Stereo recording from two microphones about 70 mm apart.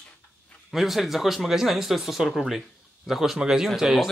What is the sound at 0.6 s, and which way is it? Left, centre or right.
Speech, centre.